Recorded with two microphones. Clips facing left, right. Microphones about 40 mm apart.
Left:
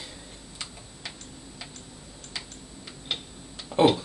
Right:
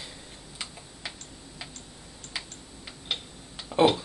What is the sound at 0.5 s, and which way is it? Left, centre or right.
Tick-tock, centre.